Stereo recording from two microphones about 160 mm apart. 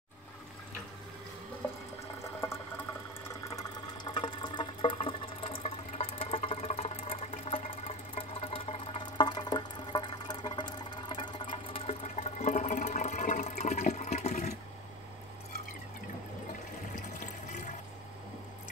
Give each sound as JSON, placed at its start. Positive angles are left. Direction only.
{"t": 2.2, "sound": "boiling", "side_deg": 15}
{"t": 3.4, "sound": "water", "side_deg": 25}
{"t": 9.3, "sound": "a sound", "side_deg": 25}
{"t": 17.5, "sound": "water", "side_deg": 50}